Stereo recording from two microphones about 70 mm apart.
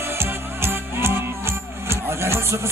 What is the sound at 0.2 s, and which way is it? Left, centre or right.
Music, right.